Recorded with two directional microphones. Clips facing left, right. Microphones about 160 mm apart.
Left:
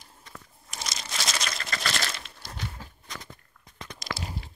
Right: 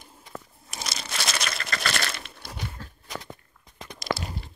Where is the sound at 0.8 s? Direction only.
65° right (ahead or behind).